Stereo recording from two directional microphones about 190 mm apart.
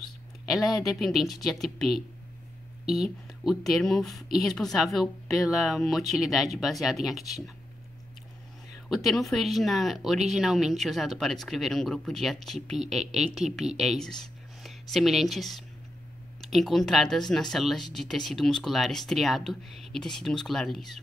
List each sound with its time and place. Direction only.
0.5 s speech: centre (ahead or behind)
8.8 s speech: centre (ahead or behind)